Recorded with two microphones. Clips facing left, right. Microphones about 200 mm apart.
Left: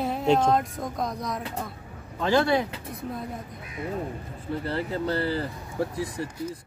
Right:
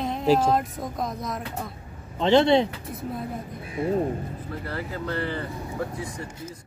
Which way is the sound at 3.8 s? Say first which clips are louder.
Right 7 dB; 30° right (ahead or behind).